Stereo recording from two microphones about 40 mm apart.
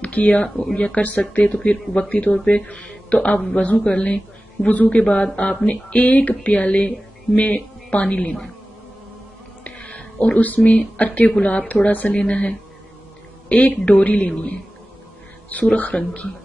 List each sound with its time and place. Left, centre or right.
0.0 s speech: left
2.0 s speech: left
2.3 s speech: left
4.6 s speech: left
9.7 s a sound: left
11.0 s speech: left
12.1 s speech: left
15.5 s speech: left